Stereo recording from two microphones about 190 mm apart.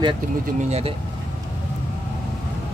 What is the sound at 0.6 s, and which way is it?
Speech, 35° right (ahead or behind).